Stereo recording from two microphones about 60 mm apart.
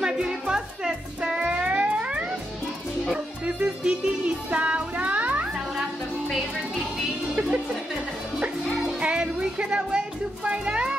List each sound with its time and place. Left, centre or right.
0.0 s music: centre
7.3 s music: centre